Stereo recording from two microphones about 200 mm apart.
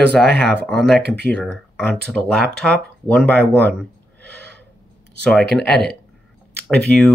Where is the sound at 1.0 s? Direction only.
55° right (ahead or behind).